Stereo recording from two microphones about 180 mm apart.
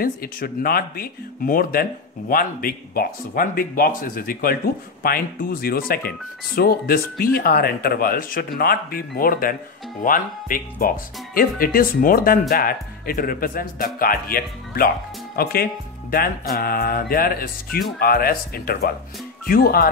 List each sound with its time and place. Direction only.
0.0 s speech: 55° left (ahead or behind)